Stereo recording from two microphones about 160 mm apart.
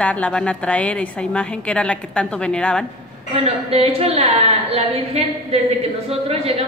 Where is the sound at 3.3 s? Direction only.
40° right (ahead or behind).